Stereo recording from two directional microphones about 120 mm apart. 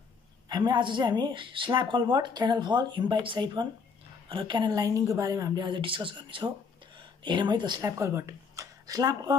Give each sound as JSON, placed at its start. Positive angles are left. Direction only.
{"t": 0.5, "sound": "speech", "side_deg": -40}
{"t": 7.8, "sound": "speech", "side_deg": -25}